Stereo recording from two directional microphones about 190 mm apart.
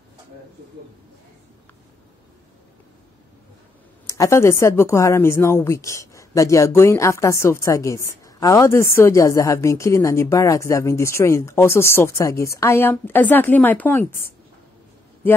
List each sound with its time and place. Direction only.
4.2 s a woman's voice: 15° left (ahead or behind)